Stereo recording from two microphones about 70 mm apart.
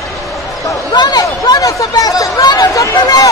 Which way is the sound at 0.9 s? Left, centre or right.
Left.